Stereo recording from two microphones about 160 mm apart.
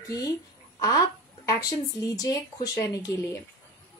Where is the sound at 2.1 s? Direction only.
20° left (ahead or behind).